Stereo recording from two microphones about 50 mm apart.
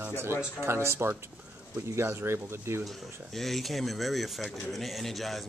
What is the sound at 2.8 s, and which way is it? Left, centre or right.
Speech, centre.